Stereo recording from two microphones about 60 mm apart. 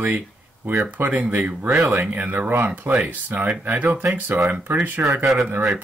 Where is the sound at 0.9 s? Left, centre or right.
Right.